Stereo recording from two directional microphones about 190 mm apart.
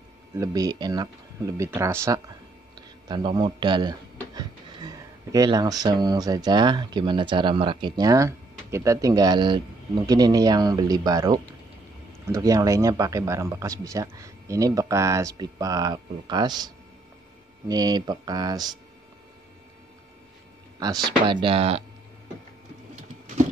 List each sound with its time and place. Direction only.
0.4 s speech: 20° right (ahead or behind)
20.8 s speech: 20° right (ahead or behind)